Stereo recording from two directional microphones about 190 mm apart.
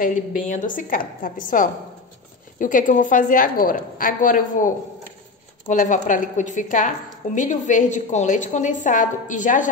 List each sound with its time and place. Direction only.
0.5 s a woman's voice: 45° left (ahead or behind)